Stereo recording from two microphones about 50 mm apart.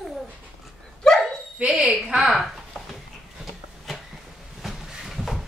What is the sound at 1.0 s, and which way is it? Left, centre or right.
Dog, centre.